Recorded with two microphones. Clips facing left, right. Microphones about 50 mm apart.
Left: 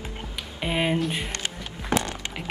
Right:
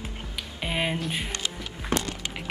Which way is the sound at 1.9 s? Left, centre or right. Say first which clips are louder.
Left 3 dB; left.